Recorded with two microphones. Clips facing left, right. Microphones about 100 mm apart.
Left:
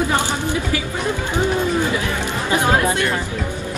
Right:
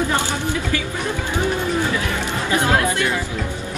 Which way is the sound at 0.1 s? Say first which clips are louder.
Left 1 dB; 15° left (ahead or behind).